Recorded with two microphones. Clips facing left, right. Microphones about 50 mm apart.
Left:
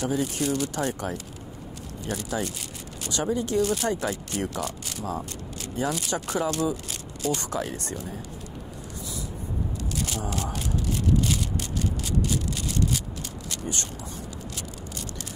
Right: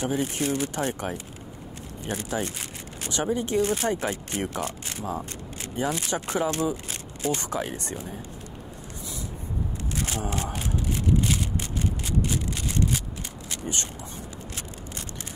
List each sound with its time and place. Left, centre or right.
0.0 s speech: right
10.0 s speech: right
11.8 s a sound: right
13.5 s vehicle: right